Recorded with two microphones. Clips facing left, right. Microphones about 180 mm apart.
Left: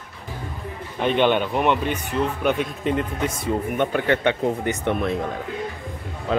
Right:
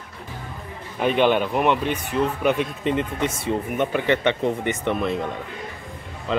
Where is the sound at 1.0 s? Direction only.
5° right (ahead or behind).